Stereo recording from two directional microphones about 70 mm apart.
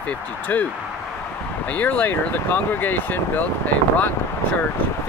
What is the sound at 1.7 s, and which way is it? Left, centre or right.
Speech, left.